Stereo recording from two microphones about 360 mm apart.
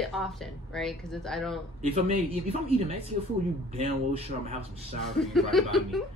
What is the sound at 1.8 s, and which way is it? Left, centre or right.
Speech, centre.